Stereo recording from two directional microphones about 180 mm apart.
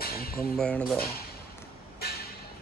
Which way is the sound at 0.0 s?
55° left (ahead or behind).